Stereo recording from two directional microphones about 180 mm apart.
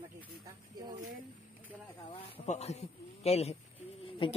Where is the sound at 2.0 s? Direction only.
30° left (ahead or behind).